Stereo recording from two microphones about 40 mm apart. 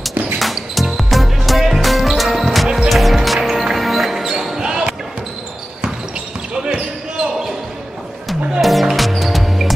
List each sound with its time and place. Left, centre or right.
0.4 s music: centre
4.6 s basketball bounce: centre
6.5 s basketball bounce: right
7.2 s basketball bounce: centre
8.3 s music: centre